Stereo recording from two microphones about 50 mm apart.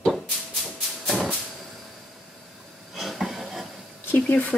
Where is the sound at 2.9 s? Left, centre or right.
Centre.